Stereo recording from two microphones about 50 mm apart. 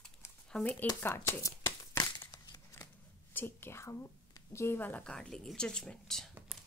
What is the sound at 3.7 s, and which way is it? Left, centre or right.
Speech, left.